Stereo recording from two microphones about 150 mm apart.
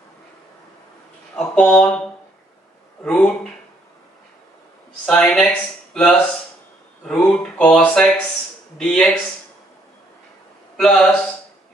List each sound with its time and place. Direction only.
1.3 s speech: 5° left (ahead or behind)
5.0 s speech: 5° left (ahead or behind)
10.8 s speech: 5° left (ahead or behind)